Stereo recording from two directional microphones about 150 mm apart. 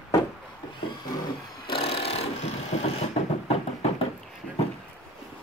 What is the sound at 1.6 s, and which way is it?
Wood, 40° left (ahead or behind).